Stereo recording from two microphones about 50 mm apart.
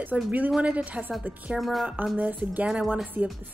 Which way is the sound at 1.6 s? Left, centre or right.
Centre.